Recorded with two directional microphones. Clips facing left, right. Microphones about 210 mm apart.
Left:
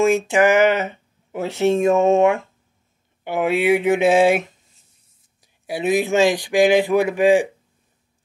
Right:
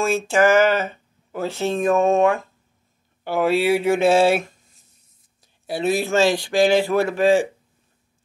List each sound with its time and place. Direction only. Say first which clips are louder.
0.0 s speech: left 2 dB; 15° left (ahead or behind)